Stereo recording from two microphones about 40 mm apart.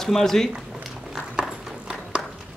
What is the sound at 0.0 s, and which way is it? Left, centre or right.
Speech, centre.